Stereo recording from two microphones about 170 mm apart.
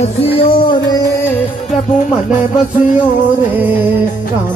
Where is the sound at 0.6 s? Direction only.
25° left (ahead or behind).